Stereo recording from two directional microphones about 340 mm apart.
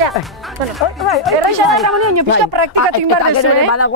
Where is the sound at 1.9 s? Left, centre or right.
Right.